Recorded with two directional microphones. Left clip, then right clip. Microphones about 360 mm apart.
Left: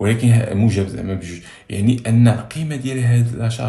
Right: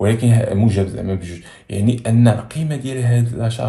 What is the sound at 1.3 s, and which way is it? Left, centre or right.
Speech, centre.